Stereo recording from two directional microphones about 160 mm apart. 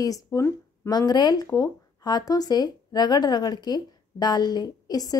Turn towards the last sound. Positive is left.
turn(degrees=25)  # may be behind; listen again after turning